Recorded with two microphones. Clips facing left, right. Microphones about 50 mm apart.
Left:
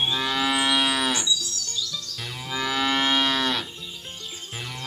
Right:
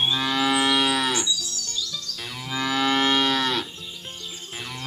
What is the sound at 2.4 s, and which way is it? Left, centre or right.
Moo, centre.